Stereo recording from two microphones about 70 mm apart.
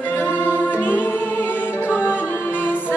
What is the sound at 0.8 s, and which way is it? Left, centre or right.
Music, left.